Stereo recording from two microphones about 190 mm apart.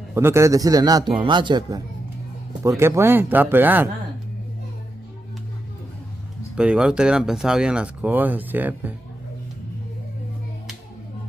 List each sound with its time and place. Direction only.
0.1 s a man's voice: 15° right (ahead or behind)
2.8 s speech: 15° right (ahead or behind)
6.5 s speech: 5° right (ahead or behind)